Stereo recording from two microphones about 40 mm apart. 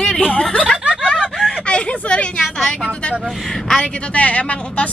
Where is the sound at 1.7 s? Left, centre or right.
Left.